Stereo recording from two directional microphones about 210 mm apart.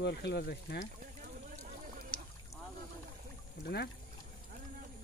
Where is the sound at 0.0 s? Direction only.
55° left (ahead or behind).